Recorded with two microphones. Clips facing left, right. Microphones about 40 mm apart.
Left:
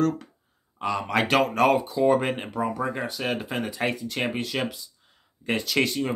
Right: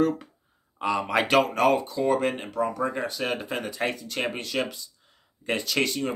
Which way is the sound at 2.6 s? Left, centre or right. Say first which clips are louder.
Right 2 dB; centre.